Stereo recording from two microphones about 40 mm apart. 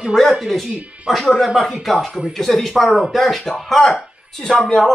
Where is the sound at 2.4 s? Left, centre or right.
Centre.